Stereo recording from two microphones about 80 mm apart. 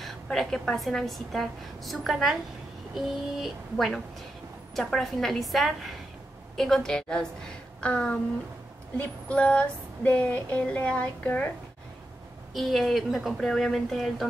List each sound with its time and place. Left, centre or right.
0.0 s a woman's voice: centre
6.5 s a sound: centre
12.5 s a woman's voice: centre